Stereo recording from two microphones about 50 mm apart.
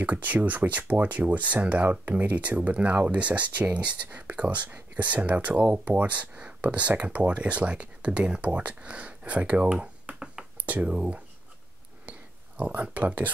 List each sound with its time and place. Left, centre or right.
0.0 s speech: right
9.8 s typing: right
10.6 s speech: right
12.1 s a sound: right